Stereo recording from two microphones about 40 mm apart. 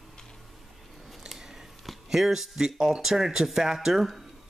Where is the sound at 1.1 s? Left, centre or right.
Centre.